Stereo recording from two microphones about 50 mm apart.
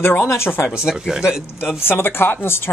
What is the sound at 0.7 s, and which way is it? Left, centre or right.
Speech, centre.